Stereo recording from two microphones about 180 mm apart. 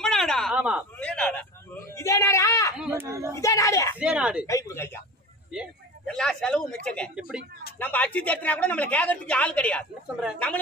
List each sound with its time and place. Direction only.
0.0 s a sound: centre (ahead or behind)
0.9 s a sound: 5° left (ahead or behind)
2.9 s speech: 15° right (ahead or behind)
3.3 s speech: 15° left (ahead or behind)
4.0 s speech: 5° right (ahead or behind)
4.5 s speech: 15° left (ahead or behind)
5.5 s speech: centre (ahead or behind)